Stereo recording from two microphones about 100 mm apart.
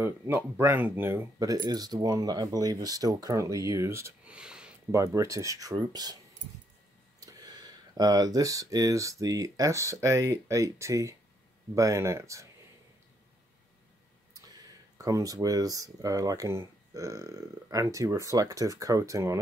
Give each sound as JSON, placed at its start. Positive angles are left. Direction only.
{"t": 0.0, "sound": "speech", "side_deg": -25}
{"t": 1.4, "sound": "speech", "side_deg": -40}
{"t": 4.2, "sound": "a sound", "side_deg": -10}
{"t": 4.9, "sound": "speech", "side_deg": -35}
{"t": 15.0, "sound": "speech", "side_deg": -35}